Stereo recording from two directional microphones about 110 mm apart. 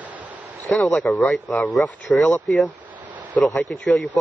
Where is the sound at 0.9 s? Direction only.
15° left (ahead or behind).